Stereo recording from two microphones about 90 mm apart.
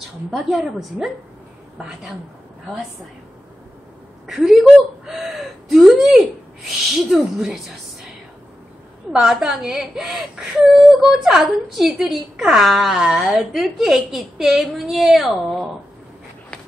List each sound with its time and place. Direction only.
0.3 s speech: 5° right (ahead or behind)
4.3 s a woman's voice: 5° right (ahead or behind)
9.1 s speech: 5° right (ahead or behind)